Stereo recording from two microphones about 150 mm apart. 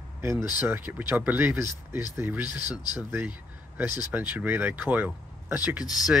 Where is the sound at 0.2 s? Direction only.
20° right (ahead or behind).